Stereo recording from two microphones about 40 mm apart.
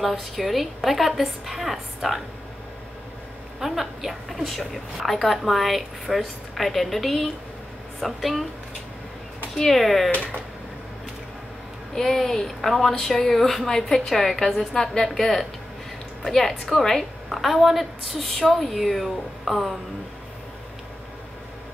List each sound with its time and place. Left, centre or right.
0.0 s a woman's voice: centre
3.5 s a woman's voice: centre
9.6 s a woman's voice: centre
10.1 s speech: left
11.9 s a woman's voice: centre